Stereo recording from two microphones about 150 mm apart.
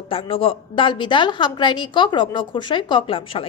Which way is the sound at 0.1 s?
35° left (ahead or behind).